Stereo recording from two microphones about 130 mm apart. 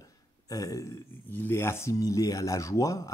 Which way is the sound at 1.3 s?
15° left (ahead or behind).